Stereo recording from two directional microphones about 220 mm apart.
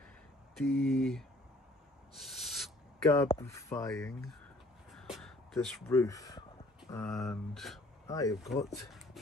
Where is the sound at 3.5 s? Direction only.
10° left (ahead or behind).